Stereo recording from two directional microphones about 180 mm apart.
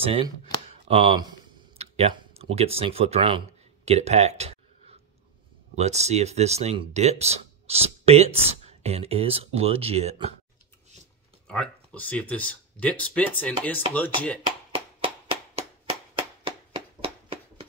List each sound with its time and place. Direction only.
0.0 s speech: 30° right (ahead or behind)
11.4 s speech: 5° left (ahead or behind)
16.2 s a sound: 30° right (ahead or behind)